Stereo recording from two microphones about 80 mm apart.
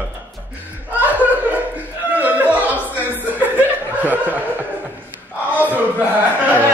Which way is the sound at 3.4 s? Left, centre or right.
Right.